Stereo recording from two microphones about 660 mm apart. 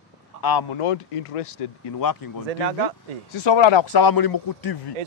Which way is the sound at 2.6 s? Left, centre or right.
Right.